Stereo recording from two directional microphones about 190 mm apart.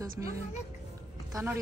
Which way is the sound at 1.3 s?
15° right (ahead or behind).